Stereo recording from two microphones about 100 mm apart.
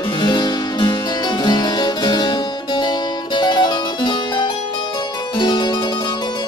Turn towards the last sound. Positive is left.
turn(degrees=50)  # may be behind; listen again after turning